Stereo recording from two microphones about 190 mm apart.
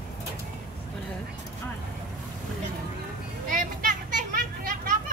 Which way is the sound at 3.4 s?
45° right (ahead or behind).